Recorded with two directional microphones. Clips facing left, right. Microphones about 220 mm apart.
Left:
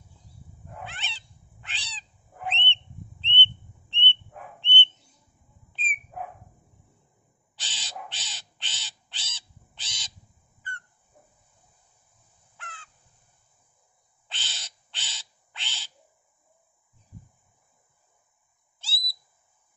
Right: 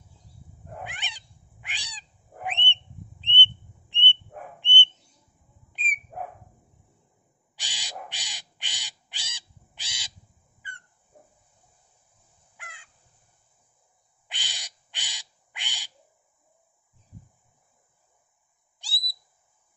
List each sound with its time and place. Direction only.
0.8 s cat: 15° right (ahead or behind)
4.6 s bird: 15° right (ahead or behind)
5.7 s dog: 15° right (ahead or behind)
7.5 s crow: 10° right (ahead or behind)
12.5 s crow: 10° right (ahead or behind)
14.2 s owl: 15° right (ahead or behind)
18.8 s owl: 15° right (ahead or behind)